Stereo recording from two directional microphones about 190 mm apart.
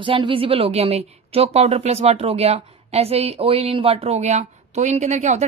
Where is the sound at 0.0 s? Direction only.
25° right (ahead or behind).